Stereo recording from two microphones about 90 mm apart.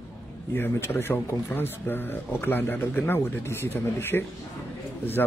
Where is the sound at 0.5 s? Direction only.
25° left (ahead or behind).